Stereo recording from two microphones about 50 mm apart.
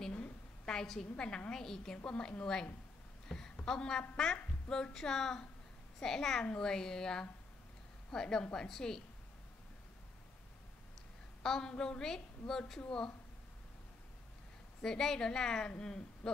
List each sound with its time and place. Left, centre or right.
0.7 s a woman's voice: centre
3.3 s a sound: centre
3.6 s a woman's voice: centre
11.4 s a woman's voice: centre
14.8 s a woman's voice: centre